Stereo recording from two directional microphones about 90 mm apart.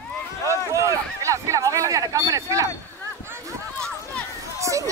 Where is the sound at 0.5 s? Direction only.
35° right (ahead or behind).